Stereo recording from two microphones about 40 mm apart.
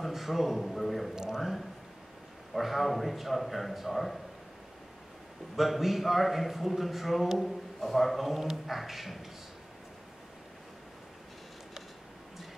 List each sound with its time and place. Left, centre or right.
0.0 s a man's voice: centre
1.1 s a man's voice: centre
1.4 s a man's voice: centre
5.6 s a man's voice: centre